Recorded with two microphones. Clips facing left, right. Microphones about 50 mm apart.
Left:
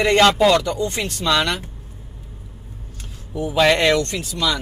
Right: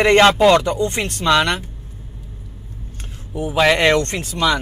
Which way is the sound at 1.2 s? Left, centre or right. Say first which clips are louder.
Right 4 dB; right.